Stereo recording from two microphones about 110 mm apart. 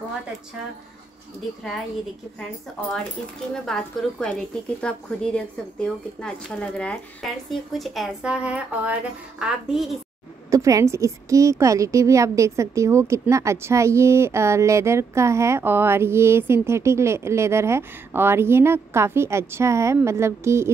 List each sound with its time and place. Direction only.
3.6 s a woman's voice: 5° left (ahead or behind)
10.5 s speech: 30° right (ahead or behind)